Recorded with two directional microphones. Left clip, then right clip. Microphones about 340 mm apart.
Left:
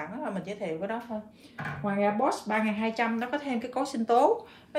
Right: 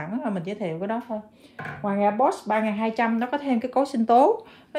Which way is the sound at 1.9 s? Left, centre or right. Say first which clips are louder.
Right 5 dB; right.